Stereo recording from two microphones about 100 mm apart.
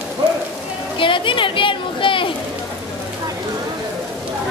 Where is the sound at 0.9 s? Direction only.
60° left (ahead or behind).